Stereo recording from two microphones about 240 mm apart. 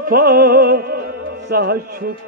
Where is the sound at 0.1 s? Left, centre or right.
Right.